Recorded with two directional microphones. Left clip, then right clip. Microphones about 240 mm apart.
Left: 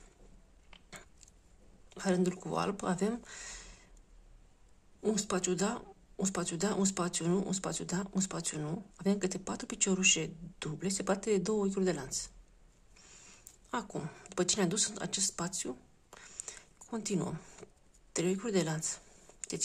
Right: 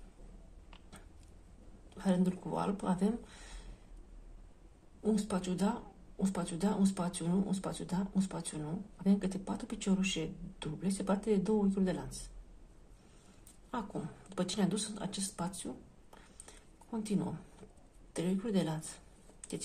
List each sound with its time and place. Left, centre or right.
2.0 s speech: left
5.0 s speech: left
13.7 s speech: left
16.4 s a sound: left
18.1 s speech: left